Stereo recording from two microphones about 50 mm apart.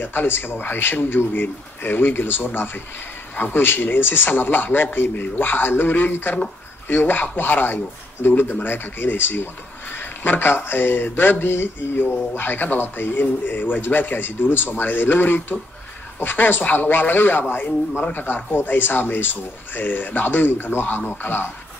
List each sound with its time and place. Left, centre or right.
0.0 s speech: left